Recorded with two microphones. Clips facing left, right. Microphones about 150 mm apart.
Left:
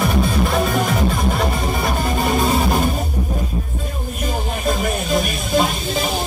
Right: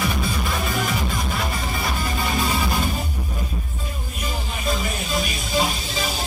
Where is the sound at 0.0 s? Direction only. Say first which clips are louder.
Left 7 dB; 55° left (ahead or behind).